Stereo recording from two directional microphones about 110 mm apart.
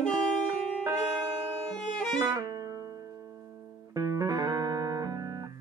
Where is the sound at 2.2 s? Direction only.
35° right (ahead or behind).